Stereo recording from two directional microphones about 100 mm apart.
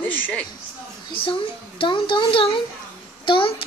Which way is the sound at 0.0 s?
15° left (ahead or behind).